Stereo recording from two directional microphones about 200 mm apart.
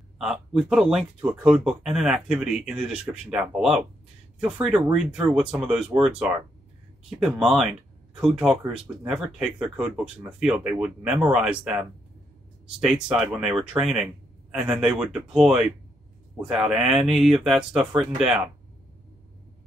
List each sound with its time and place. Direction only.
0.2 s speech: centre (ahead or behind)